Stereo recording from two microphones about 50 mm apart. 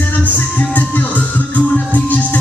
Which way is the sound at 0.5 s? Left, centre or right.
Left.